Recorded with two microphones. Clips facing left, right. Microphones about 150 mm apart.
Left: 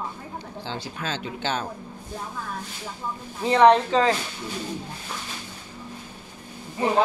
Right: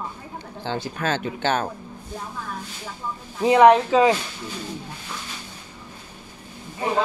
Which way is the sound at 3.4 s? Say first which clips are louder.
Right 3 dB; 10° right (ahead or behind).